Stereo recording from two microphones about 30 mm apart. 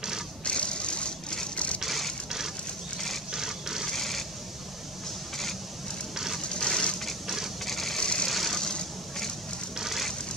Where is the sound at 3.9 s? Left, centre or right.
Centre.